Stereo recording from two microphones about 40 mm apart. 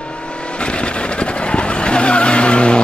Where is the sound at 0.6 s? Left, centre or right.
Left.